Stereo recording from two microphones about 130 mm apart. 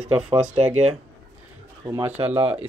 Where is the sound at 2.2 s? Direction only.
50° right (ahead or behind).